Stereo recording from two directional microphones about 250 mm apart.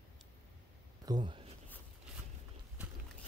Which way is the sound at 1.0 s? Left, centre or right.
Centre.